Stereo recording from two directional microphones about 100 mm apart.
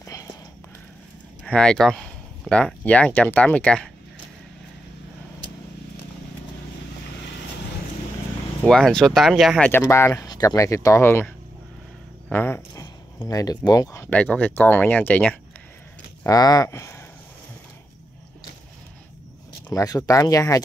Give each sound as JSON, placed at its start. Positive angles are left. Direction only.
{"t": 0.0, "sound": "a sound", "side_deg": 35}
{"t": 1.4, "sound": "speech", "side_deg": 10}
{"t": 8.6, "sound": "speech", "side_deg": 5}
{"t": 9.7, "sound": "speech", "side_deg": 25}
{"t": 10.2, "sound": "speech", "side_deg": 40}
{"t": 13.3, "sound": "speech", "side_deg": 40}
{"t": 14.1, "sound": "speech", "side_deg": 15}
{"t": 16.3, "sound": "speech", "side_deg": 40}
{"t": 19.7, "sound": "speech", "side_deg": 35}